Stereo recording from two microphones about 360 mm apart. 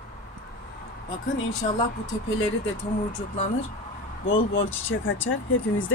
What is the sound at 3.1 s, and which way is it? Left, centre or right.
Speech, left.